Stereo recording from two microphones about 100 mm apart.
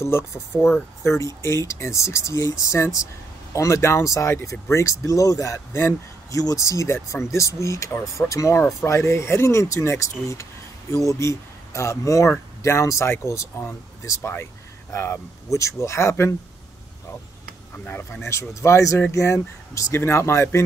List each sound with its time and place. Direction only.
0.0 s speech: 30° left (ahead or behind)
17.8 s speech: 15° left (ahead or behind)
18.2 s speech: 30° left (ahead or behind)